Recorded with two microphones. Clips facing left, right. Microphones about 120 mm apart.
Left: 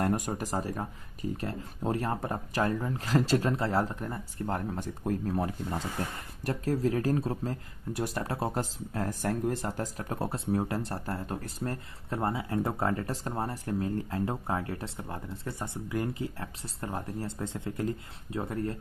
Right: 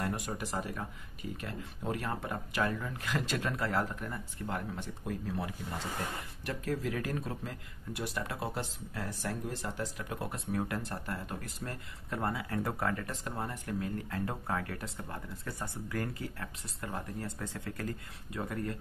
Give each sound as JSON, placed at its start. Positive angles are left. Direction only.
{"t": 0.0, "sound": "speech", "side_deg": 45}